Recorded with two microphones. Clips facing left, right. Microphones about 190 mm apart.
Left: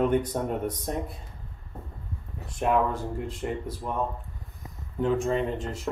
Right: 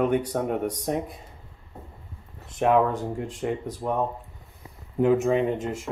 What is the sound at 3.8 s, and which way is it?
Speech, 40° right (ahead or behind).